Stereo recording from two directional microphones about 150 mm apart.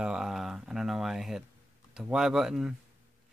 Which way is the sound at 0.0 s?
5° right (ahead or behind).